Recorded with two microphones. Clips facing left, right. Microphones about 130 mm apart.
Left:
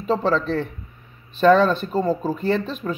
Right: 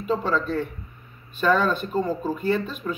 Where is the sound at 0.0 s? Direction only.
40° left (ahead or behind).